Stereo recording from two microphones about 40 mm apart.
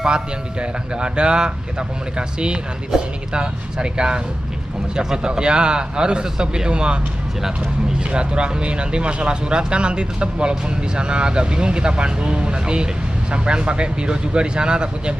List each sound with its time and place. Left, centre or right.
0.0 s speech: right
8.0 s speech: right